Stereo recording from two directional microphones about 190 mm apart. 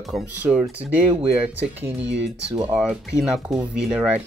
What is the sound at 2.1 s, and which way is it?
Speech, 70° right (ahead or behind).